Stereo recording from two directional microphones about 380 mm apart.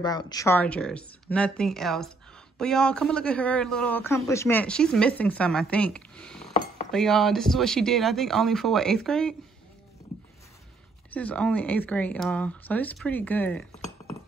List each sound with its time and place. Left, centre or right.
0.0 s speech: centre
6.5 s cutlery: centre
6.9 s speech: centre
11.1 s speech: centre